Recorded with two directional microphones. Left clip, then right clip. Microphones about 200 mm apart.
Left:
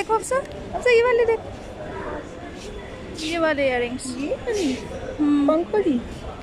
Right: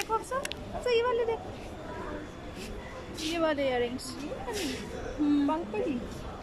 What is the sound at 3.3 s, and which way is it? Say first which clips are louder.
Speech: left 8 dB; centre (ahead or behind).